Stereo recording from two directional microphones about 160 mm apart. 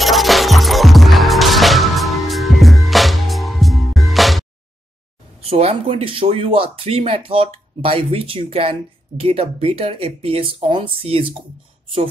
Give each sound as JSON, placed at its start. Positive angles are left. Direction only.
{"t": 0.0, "sound": "music", "side_deg": 0}
{"t": 5.4, "sound": "speech", "side_deg": -40}